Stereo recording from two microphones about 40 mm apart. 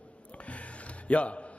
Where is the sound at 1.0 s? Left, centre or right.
Left.